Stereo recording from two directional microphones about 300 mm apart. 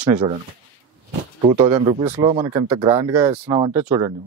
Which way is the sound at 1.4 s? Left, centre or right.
Centre.